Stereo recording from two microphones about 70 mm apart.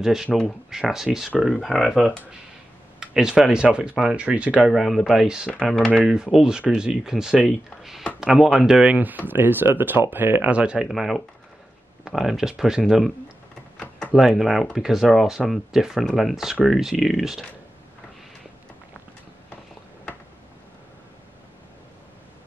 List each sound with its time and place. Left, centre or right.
0.0 s speech: centre
3.0 s speech: centre
4.6 s speech: centre; by 10.5 s right
10.5 s speech: centre
10.9 s speech: centre
14.1 s speech: centre